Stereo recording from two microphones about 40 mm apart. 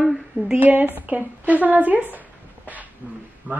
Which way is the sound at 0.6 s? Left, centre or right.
Right.